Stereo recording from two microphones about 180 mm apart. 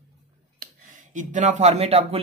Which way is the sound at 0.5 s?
45° right (ahead or behind).